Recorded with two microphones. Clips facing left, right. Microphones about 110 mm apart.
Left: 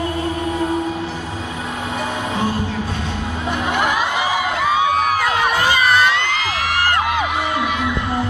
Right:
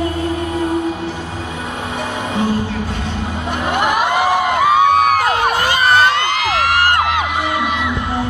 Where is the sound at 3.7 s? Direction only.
55° right (ahead or behind).